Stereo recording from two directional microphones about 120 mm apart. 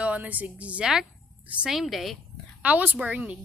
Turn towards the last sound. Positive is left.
turn(degrees=-10)  # may be behind; listen again after turning